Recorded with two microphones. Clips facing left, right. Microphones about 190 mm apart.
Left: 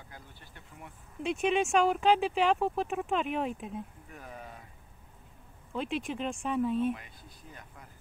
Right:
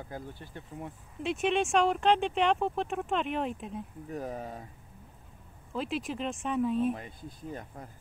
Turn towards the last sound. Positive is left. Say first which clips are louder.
# right 10 dB
turn(degrees=-40)  # may be behind; listen again after turning